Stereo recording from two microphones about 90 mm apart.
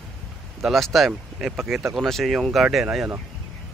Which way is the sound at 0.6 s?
Centre (ahead or behind).